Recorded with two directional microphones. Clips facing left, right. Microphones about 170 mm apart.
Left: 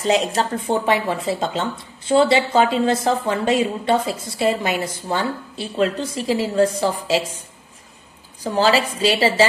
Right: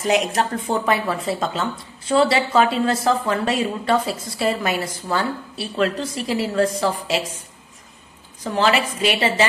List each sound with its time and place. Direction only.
0.0 s speech: 30° left (ahead or behind)
8.5 s a woman's voice: 30° left (ahead or behind)